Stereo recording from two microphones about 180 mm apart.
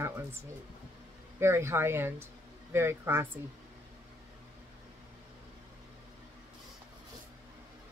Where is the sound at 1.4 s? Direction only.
15° right (ahead or behind).